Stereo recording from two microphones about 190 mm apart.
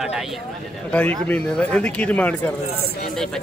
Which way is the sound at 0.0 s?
5° right (ahead or behind).